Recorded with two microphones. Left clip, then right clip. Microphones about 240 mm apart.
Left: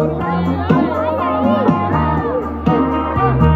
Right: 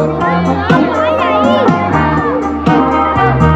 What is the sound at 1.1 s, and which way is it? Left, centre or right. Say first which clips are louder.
Music: right 6 dB; right.